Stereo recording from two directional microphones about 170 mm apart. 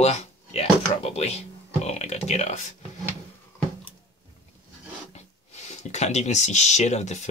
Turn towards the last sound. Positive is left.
turn(degrees=40)  # may be behind; listen again after turning